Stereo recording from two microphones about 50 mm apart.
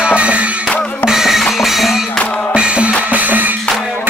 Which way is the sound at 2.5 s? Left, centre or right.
Right.